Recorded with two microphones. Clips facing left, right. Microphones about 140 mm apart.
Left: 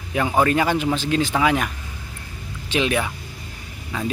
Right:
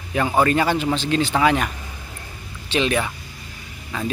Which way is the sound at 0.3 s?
5° left (ahead or behind).